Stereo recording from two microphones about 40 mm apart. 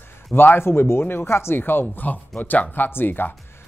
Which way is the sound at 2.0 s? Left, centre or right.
Left.